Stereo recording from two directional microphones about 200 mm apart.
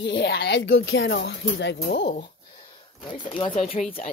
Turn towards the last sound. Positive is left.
turn(degrees=45)  # may be behind; listen again after turning